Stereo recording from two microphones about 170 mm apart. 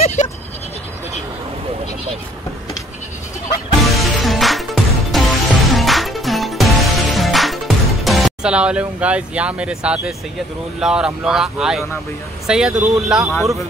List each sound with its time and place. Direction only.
0.0 s bleat: 40° left (ahead or behind)
3.8 s music: centre (ahead or behind)
10.8 s speech: 5° right (ahead or behind)